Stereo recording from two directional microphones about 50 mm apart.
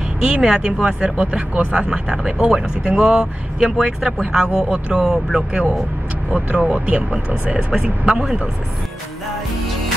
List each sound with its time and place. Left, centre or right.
0.2 s speech: centre
6.3 s speech: right
8.1 s speech: centre